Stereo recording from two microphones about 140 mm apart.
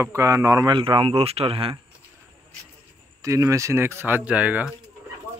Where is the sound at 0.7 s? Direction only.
40° right (ahead or behind).